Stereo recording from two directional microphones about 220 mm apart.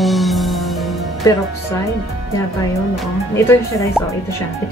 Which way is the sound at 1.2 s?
15° left (ahead or behind).